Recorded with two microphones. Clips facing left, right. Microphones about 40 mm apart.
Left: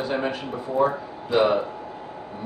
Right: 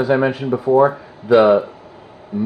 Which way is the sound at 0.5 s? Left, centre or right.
Right.